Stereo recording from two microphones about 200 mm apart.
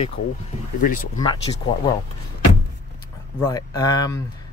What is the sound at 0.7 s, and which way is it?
Speech, 45° left (ahead or behind).